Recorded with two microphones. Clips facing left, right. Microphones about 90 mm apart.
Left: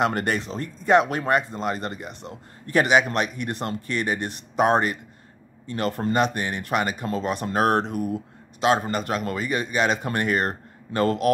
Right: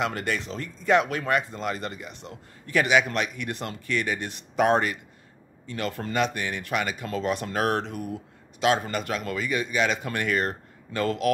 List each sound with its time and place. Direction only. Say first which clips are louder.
0.0 s speech: left 5 dB; 45° left (ahead or behind)